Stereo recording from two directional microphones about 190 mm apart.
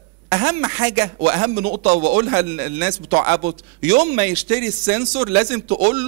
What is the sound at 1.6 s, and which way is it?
Speech, 50° right (ahead or behind).